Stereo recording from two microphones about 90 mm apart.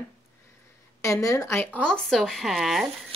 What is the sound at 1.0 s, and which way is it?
Speech, 35° left (ahead or behind).